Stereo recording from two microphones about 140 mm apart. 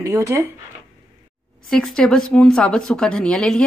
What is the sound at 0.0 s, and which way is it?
Speech, 20° right (ahead or behind).